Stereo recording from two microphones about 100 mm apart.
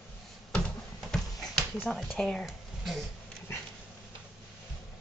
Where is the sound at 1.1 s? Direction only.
5° left (ahead or behind).